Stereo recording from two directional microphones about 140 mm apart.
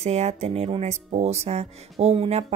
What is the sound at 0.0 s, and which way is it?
A woman's voice, 50° right (ahead or behind).